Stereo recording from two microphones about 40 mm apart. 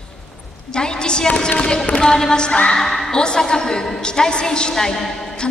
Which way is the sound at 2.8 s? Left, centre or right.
Centre.